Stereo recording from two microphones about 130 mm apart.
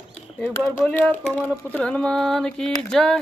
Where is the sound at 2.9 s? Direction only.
5° left (ahead or behind).